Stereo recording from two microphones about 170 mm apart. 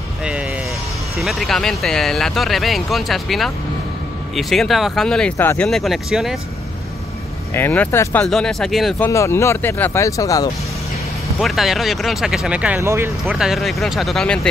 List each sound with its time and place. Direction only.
0.2 s vehicle: 5° right (ahead or behind)
1.1 s speech: centre (ahead or behind)
7.5 s speech: 10° left (ahead or behind)
9.1 s speech: 15° left (ahead or behind)
11.3 s speech: centre (ahead or behind)
13.2 s speech: 5° right (ahead or behind)